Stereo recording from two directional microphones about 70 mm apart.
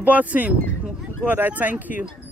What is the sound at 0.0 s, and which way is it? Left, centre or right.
Speech, right.